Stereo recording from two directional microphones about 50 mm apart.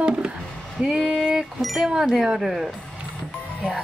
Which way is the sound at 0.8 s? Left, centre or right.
Centre.